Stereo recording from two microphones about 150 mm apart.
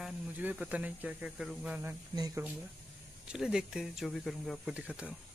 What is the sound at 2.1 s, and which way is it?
Speech, 25° right (ahead or behind).